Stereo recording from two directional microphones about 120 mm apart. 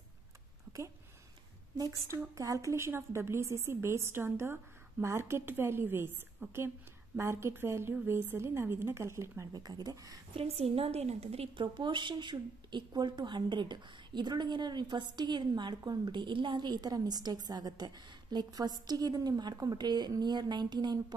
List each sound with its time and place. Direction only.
1.8 s a woman's voice: 25° right (ahead or behind)
10.3 s a woman's voice: 55° right (ahead or behind)
11.6 s speech: 40° right (ahead or behind)